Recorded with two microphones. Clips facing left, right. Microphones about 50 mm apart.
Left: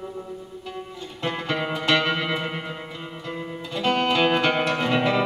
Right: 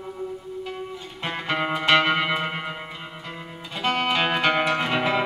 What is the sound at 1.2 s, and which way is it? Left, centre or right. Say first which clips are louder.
Music: even; centre.